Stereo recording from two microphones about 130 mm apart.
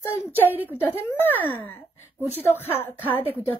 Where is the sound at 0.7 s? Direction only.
15° left (ahead or behind).